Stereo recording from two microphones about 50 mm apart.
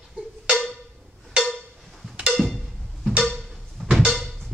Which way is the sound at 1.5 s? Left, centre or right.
Centre.